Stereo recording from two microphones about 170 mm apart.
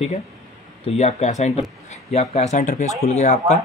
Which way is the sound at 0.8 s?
40° left (ahead or behind).